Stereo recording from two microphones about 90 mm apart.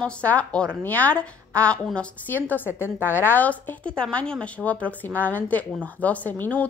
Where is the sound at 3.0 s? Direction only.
25° left (ahead or behind).